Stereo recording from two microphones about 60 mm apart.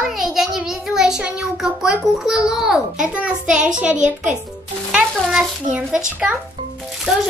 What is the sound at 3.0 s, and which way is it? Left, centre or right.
A child's voice, centre.